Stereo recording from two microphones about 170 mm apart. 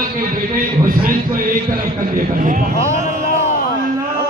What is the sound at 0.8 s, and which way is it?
A man's voice, 55° right (ahead or behind).